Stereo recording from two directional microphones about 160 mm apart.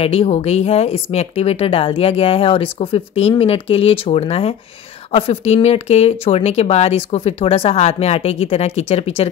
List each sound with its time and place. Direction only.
0.0 s speech: 40° left (ahead or behind)